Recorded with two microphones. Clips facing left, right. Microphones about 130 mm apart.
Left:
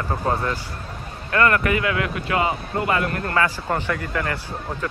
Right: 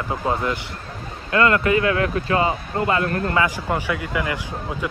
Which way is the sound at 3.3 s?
15° right (ahead or behind).